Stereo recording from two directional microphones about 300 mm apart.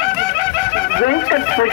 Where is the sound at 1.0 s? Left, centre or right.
Left.